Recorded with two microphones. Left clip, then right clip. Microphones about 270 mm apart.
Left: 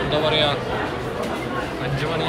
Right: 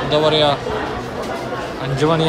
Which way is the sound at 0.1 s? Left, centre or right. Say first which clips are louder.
Right 6 dB; centre.